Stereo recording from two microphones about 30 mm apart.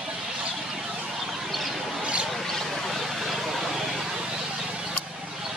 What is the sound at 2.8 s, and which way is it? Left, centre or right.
Vehicle, centre.